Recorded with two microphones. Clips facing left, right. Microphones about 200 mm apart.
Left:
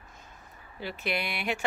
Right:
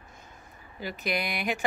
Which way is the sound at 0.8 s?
45° right (ahead or behind).